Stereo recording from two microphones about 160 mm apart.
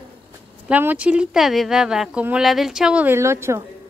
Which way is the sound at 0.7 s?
10° right (ahead or behind).